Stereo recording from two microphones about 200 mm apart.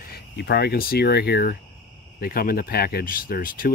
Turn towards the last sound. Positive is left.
turn(degrees=45)  # may be behind; listen again after turning